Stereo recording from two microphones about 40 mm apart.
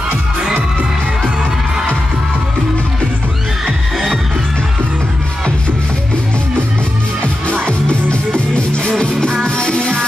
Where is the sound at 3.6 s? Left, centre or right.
Centre.